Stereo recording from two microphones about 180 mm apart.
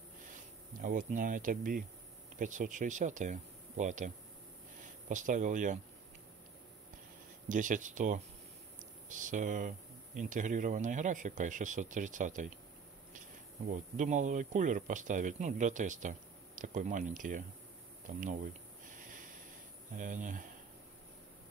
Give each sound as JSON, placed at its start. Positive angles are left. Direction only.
{"t": 0.7, "sound": "speech", "side_deg": -45}
{"t": 5.1, "sound": "speech", "side_deg": -45}
{"t": 7.4, "sound": "speech", "side_deg": -45}
{"t": 13.9, "sound": "speech", "side_deg": -40}
{"t": 18.9, "sound": "snort", "side_deg": -45}
{"t": 20.0, "sound": "speech", "side_deg": -45}